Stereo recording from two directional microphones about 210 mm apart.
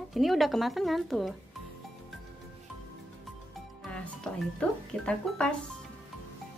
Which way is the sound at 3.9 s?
5° left (ahead or behind).